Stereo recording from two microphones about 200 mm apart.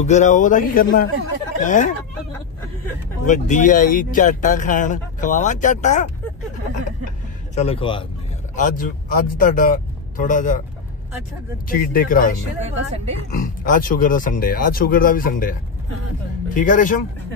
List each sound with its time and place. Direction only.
0.0 s speech: 35° left (ahead or behind)
3.3 s speech: 40° left (ahead or behind)
7.5 s speech: 30° left (ahead or behind)
8.5 s speech: 40° left (ahead or behind)
11.7 s speech: 45° left (ahead or behind)
12.6 s speech: 30° right (ahead or behind)
13.4 s speech: 45° left (ahead or behind)